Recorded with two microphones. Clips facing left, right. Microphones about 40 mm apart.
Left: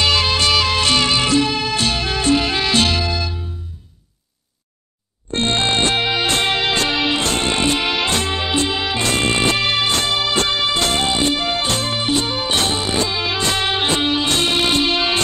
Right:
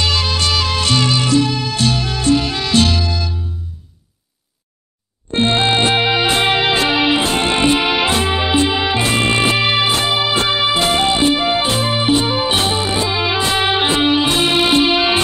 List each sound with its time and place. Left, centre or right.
0.0 s music: centre
5.3 s music: centre